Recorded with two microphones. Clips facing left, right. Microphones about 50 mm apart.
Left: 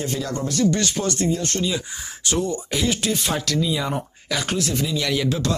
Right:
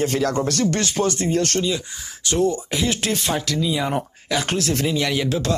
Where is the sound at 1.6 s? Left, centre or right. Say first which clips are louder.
Right 1 dB; centre.